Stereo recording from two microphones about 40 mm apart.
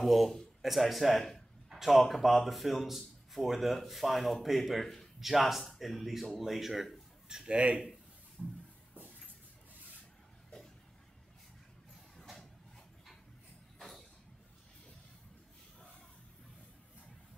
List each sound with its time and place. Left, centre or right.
0.0 s speech: centre
7.2 s speech: right
12.2 s a sound: centre